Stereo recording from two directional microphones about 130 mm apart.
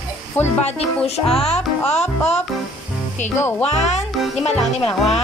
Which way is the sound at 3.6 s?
55° left (ahead or behind).